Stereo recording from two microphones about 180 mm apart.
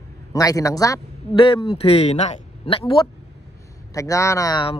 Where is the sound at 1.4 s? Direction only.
30° left (ahead or behind).